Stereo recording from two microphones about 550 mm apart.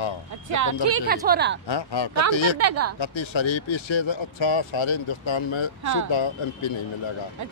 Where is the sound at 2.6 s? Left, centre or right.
Right.